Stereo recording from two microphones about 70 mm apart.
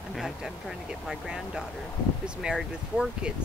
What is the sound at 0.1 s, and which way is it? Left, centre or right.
Speech, centre.